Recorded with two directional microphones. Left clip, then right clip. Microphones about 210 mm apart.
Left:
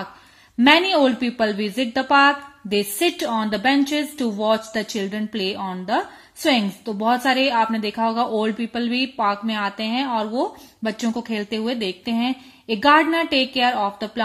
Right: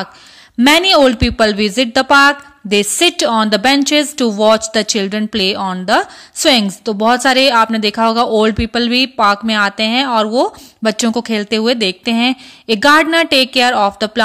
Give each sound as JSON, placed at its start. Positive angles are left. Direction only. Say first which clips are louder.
{"t": 0.6, "sound": "a woman's voice", "louder": "right 6 dB", "side_deg": -30}